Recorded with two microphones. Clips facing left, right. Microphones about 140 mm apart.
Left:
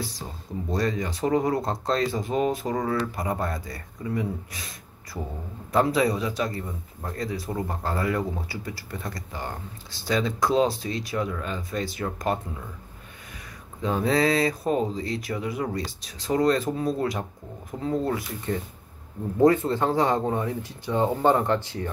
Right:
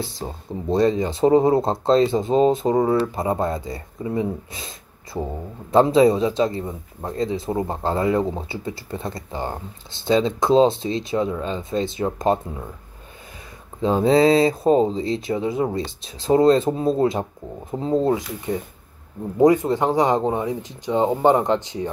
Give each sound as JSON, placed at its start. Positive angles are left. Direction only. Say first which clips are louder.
{"t": 0.2, "sound": "a man's voice", "louder": "right 6 dB", "side_deg": -35}
{"t": 13.7, "sound": "a man's voice", "louder": "right 7 dB", "side_deg": -30}
{"t": 18.5, "sound": "speech", "louder": "right 3 dB", "side_deg": -15}